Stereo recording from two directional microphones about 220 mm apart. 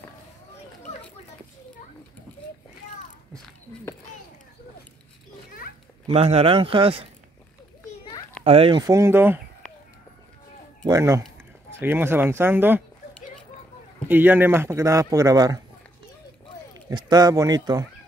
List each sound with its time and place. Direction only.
6.0 s speech: 25° right (ahead or behind)
8.5 s a man's voice: 25° right (ahead or behind)
10.8 s a man's voice: 15° right (ahead or behind)
14.0 s a man's voice: 10° right (ahead or behind)
16.9 s a man's voice: 15° right (ahead or behind)